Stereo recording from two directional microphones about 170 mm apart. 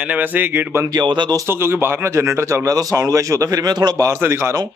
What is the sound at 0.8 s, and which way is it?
Speech, 25° right (ahead or behind).